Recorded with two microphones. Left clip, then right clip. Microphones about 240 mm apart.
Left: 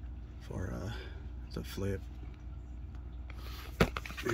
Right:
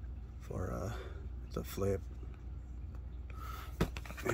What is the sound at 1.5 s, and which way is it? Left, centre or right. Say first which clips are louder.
Speech: right 3 dB; centre.